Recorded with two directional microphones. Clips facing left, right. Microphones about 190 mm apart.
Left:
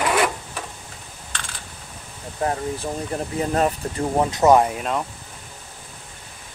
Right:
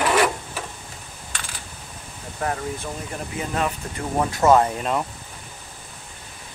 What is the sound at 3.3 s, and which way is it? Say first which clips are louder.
Speech: left 5 dB; 40° left (ahead or behind).